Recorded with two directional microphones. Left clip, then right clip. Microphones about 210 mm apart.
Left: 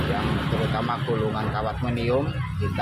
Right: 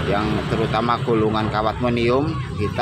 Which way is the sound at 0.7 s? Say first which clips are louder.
Right 10 dB; 35° right (ahead or behind).